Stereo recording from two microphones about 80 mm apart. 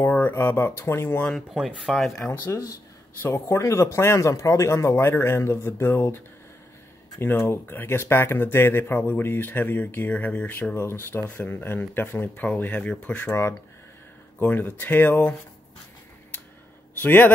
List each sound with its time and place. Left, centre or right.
0.3 s speech: left
1.5 s speech: centre
2.4 s speech: left
3.2 s speech: left
13.3 s speech: left
14.4 s speech: left
17.0 s speech: left